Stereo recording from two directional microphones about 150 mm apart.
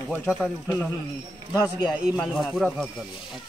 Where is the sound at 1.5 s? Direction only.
25° left (ahead or behind).